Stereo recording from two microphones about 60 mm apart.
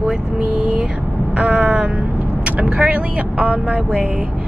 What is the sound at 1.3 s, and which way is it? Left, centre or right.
Vehicle, centre.